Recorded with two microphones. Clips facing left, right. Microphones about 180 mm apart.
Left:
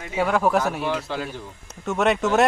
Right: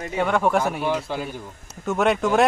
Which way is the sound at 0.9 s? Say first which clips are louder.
Right 1 dB; 15° right (ahead or behind).